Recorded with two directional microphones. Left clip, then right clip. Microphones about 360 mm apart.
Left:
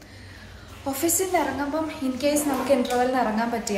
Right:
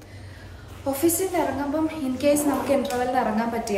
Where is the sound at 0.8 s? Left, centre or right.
Centre.